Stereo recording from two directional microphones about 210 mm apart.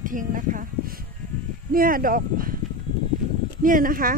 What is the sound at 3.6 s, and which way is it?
Speech, 40° right (ahead or behind).